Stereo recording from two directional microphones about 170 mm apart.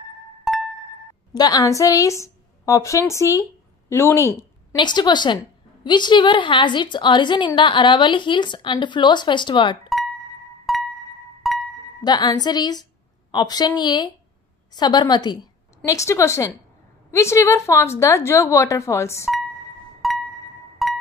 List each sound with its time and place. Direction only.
0.5 s music: centre (ahead or behind)
1.3 s a woman's voice: 20° left (ahead or behind)
10.7 s music: centre (ahead or behind)
12.0 s a woman's voice: 25° left (ahead or behind)
20.0 s music: centre (ahead or behind)